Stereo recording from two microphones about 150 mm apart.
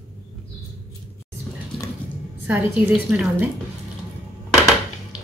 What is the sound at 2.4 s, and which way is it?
A woman's voice, 10° right (ahead or behind).